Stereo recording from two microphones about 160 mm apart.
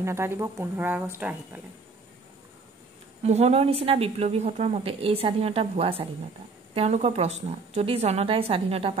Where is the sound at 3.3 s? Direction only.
40° right (ahead or behind).